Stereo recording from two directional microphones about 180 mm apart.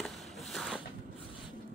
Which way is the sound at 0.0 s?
Centre (ahead or behind).